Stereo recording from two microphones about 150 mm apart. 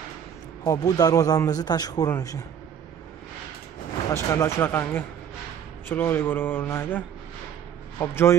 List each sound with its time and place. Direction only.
0.7 s a man's voice: 25° left (ahead or behind)
4.1 s speech: 20° left (ahead or behind)